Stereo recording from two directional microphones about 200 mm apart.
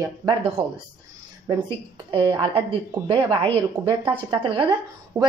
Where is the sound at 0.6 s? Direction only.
25° right (ahead or behind).